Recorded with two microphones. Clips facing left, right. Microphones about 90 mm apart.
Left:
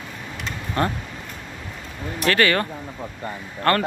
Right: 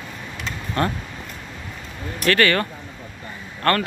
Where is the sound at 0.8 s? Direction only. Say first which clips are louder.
Even; 20° left (ahead or behind).